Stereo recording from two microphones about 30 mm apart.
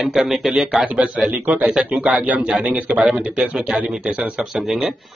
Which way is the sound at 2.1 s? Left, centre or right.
Right.